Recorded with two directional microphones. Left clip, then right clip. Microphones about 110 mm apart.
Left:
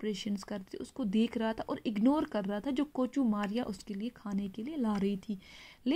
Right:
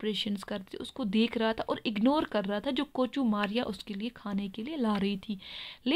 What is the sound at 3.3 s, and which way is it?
Speech, 15° right (ahead or behind).